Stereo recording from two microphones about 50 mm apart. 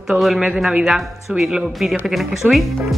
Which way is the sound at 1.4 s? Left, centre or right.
Centre.